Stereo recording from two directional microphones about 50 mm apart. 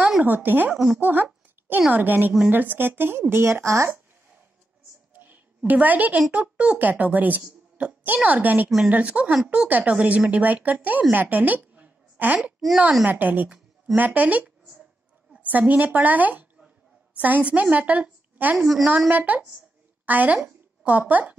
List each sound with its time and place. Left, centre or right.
0.2 s speech: right
0.9 s a sound: right
1.9 s speech: right
3.6 s speech: right
5.1 s a sound: right
5.7 s speech: right; by 9.7 s centre
9.7 s speech: right
12.5 s a woman's voice: centre
13.0 s a woman's voice: right